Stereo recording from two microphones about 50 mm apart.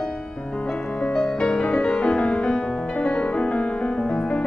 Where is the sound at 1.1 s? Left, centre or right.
Centre.